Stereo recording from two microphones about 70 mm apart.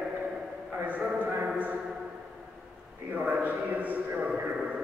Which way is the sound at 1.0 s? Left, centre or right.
Centre.